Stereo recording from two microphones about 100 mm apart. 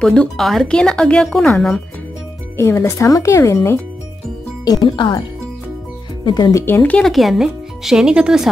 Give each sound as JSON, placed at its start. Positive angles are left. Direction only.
{"t": 0.0, "sound": "speech", "side_deg": 5}
{"t": 2.5, "sound": "speech", "side_deg": 25}
{"t": 4.8, "sound": "speech", "side_deg": 50}
{"t": 6.2, "sound": "speech", "side_deg": 45}
{"t": 6.6, "sound": "speech", "side_deg": 20}
{"t": 7.1, "sound": "speech", "side_deg": 0}